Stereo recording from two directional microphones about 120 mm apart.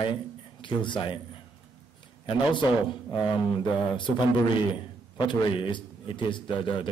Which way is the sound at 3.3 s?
40° left (ahead or behind).